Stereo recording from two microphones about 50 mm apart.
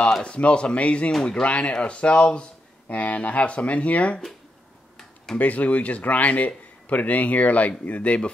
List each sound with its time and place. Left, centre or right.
0.2 s speech: left
4.9 s tick-tock: centre
5.4 s a man's voice: left